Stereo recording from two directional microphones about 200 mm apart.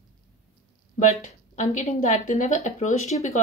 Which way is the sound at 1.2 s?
40° left (ahead or behind).